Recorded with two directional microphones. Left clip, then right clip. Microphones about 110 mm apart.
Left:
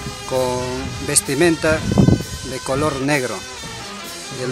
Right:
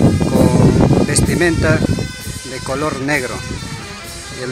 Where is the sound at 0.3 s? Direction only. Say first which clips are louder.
Right 3 dB; 5° right (ahead or behind).